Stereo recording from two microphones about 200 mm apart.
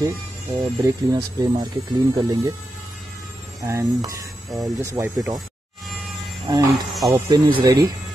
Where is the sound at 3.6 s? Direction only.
15° right (ahead or behind).